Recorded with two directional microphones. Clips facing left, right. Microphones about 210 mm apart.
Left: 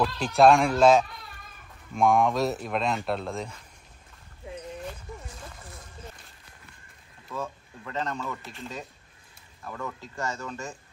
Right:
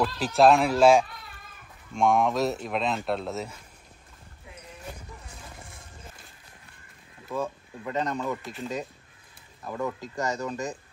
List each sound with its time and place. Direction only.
0.0 s speech: centre (ahead or behind)
7.2 s speech: 15° right (ahead or behind)
8.4 s speech: centre (ahead or behind)
9.7 s speech: 20° right (ahead or behind)